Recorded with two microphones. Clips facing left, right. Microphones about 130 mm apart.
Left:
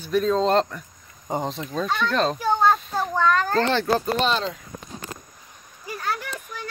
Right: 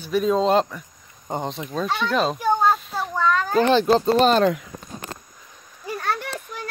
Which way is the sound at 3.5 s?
15° right (ahead or behind).